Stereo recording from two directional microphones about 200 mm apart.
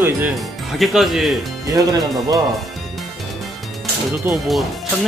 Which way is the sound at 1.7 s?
15° right (ahead or behind).